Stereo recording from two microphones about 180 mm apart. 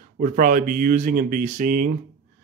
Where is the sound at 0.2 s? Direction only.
50° right (ahead or behind).